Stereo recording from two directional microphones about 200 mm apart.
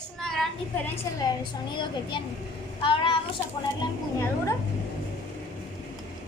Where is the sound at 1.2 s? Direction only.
20° left (ahead or behind).